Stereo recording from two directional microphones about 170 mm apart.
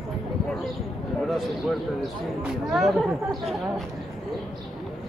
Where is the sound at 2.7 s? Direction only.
Centre (ahead or behind).